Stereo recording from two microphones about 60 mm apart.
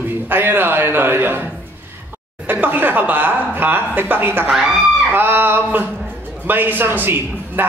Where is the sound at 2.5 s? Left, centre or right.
Right.